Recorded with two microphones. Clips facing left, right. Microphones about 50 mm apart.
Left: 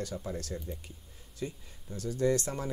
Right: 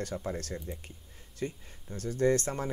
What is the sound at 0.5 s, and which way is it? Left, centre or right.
Speech, right.